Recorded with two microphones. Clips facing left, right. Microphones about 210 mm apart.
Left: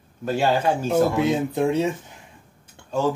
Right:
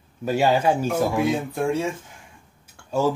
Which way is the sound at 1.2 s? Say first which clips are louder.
Left 2 dB; 20° left (ahead or behind).